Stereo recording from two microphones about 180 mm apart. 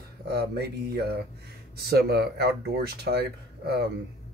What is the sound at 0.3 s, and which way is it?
Speech, 65° right (ahead or behind).